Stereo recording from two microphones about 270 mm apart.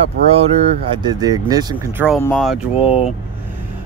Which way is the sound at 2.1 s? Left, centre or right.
Centre.